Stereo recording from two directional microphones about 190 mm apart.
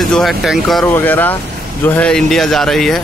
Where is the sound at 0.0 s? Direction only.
Centre (ahead or behind).